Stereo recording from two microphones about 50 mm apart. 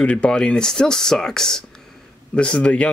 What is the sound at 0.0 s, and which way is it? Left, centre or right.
Speech, left.